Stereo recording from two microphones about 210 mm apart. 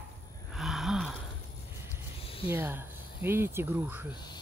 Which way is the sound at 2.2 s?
25° left (ahead or behind).